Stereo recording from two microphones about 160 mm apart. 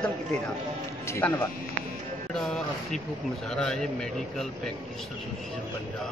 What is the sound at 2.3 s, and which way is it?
Speech, 5° left (ahead or behind).